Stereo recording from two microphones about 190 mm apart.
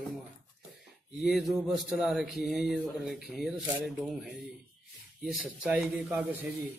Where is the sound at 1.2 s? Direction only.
Centre (ahead or behind).